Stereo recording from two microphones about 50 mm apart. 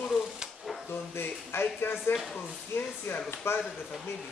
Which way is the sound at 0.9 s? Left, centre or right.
Left.